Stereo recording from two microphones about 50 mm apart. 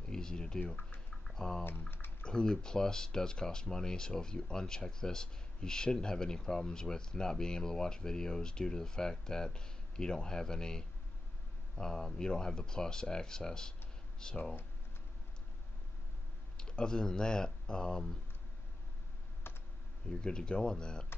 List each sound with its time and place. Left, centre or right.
0.1 s speech: centre
1.2 s typing: centre
1.6 s speech: left
2.2 s speech: centre
16.5 s speech: centre
19.4 s computer keyboard: left
20.1 s speech: centre